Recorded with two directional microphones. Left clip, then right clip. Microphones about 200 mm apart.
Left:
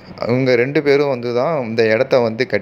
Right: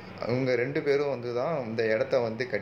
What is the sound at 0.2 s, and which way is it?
Speech, 40° left (ahead or behind).